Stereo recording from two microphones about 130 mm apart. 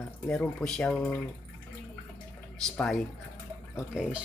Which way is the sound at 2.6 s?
5° left (ahead or behind).